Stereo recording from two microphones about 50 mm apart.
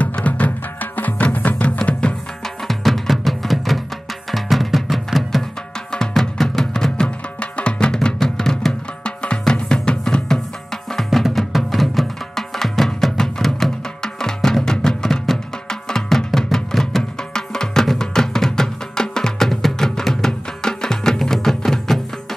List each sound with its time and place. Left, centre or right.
0.0 s music: left
1.9 s music: left
2.7 s music: centre
5.9 s music: centre
7.3 s music: left
9.0 s music: centre
11.0 s music: centre